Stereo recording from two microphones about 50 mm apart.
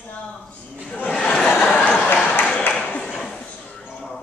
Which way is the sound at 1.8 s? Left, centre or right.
Left.